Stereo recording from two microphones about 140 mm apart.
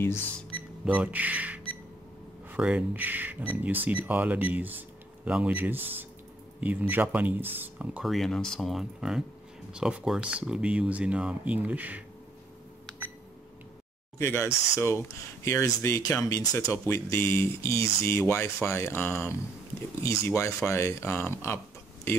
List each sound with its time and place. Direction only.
0.8 s speech: 10° right (ahead or behind)
14.1 s speech: 20° left (ahead or behind)